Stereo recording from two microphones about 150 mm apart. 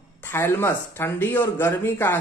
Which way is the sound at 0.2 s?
15° left (ahead or behind).